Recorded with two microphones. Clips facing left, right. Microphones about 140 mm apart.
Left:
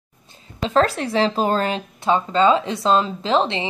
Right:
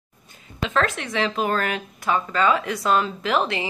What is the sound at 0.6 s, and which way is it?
Speech, 35° left (ahead or behind).